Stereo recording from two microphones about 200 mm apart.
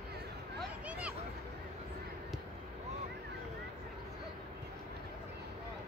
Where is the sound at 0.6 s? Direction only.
5° right (ahead or behind).